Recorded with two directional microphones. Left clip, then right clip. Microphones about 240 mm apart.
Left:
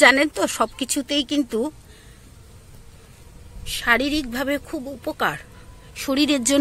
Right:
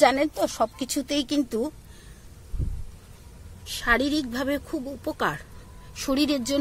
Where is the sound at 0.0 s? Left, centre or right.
Centre.